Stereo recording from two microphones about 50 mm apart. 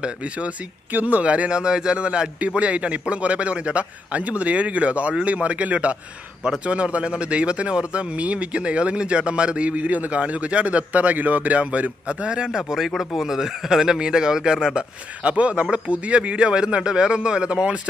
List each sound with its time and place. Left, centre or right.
0.0 s speech: right
0.9 s speech: right
12.4 s speech: centre